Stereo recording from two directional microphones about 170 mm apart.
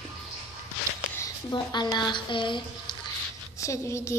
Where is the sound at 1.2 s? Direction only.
20° left (ahead or behind).